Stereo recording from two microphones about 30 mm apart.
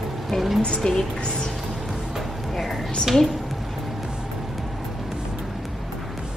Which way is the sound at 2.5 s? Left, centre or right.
Centre.